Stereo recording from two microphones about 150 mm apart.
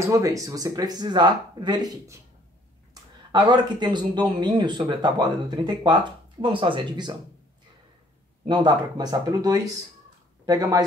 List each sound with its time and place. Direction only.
0.0 s speech: 20° right (ahead or behind)
8.5 s speech: 30° right (ahead or behind)